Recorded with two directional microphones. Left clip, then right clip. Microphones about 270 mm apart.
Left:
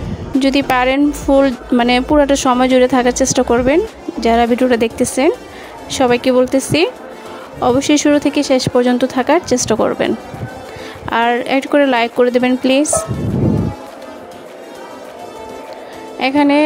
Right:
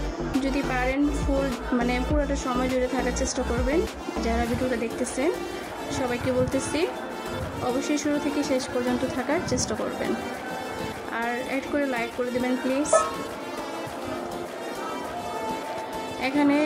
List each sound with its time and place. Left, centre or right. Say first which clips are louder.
0.4 s speech: left 14 dB; left
11.1 s speech: left 16 dB; left
16.2 s speech: left 11 dB; left